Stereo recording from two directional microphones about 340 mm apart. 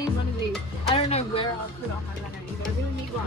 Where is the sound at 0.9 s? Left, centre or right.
Centre.